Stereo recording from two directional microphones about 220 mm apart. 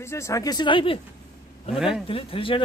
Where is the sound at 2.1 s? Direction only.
25° left (ahead or behind).